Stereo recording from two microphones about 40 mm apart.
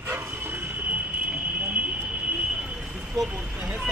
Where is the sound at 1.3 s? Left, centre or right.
Right.